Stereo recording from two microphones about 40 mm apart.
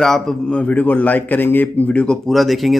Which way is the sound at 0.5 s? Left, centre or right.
Left.